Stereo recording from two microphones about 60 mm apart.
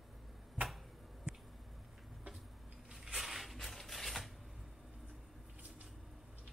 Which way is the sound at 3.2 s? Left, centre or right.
Centre.